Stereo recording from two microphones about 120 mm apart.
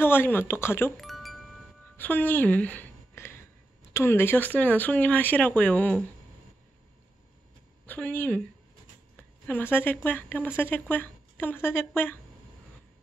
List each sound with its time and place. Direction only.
0.0 s a woman's voice: 20° left (ahead or behind)
0.9 s music: centre (ahead or behind)
2.0 s music: 15° left (ahead or behind)
3.9 s a woman's voice: 20° left (ahead or behind)
7.8 s a woman's voice: 15° left (ahead or behind)
9.5 s a woman's voice: 15° left (ahead or behind)